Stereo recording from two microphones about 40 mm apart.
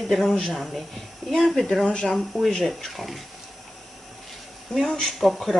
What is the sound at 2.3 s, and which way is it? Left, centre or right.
Speech, centre.